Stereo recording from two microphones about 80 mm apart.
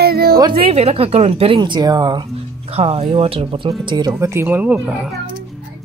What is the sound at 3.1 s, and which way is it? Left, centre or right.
Speech, right.